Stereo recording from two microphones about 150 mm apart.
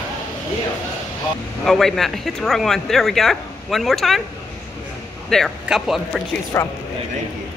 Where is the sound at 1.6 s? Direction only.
Centre (ahead or behind).